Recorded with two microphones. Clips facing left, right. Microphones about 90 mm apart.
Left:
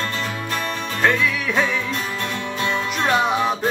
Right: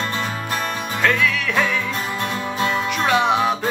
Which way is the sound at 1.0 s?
15° left (ahead or behind).